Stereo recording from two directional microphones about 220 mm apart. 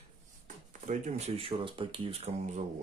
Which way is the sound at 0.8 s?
35° right (ahead or behind).